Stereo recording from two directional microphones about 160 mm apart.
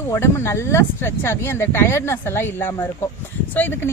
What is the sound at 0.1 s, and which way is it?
Speech, 15° left (ahead or behind).